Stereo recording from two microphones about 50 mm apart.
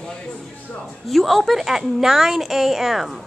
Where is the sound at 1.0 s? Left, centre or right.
Centre.